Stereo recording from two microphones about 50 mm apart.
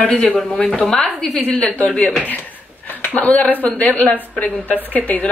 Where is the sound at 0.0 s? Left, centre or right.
Centre.